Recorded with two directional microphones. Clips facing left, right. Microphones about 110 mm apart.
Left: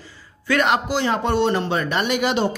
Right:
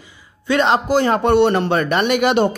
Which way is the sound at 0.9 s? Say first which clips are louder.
Right 6 dB; 45° right (ahead or behind).